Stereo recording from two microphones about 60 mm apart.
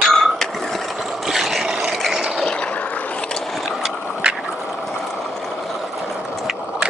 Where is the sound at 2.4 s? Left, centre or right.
Centre.